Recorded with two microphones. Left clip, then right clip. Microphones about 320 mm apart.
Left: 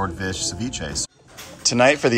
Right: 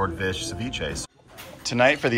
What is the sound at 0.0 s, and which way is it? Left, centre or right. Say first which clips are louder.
Speech: left 1 dB; centre.